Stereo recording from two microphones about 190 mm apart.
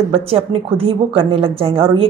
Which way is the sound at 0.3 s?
30° right (ahead or behind).